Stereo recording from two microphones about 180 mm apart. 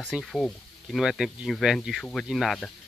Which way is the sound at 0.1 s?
Centre (ahead or behind).